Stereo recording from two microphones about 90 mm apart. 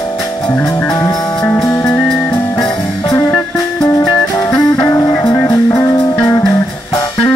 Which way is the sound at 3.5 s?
35° left (ahead or behind).